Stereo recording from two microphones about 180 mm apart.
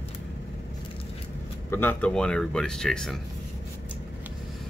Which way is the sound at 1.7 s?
10° left (ahead or behind).